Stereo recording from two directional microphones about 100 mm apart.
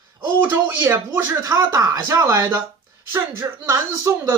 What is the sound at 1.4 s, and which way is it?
Speech, 35° right (ahead or behind).